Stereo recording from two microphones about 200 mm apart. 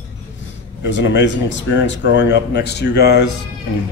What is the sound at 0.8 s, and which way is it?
A man's voice, 65° left (ahead or behind).